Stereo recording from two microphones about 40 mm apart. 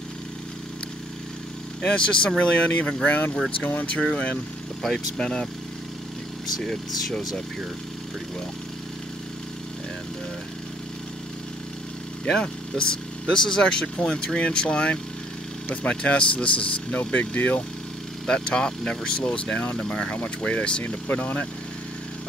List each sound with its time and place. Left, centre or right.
1.8 s speech: left
3.8 s speech: left
6.6 s speech: centre
12.3 s speech: centre; by 17.6 s left
18.2 s speech: left
21.2 s speech: left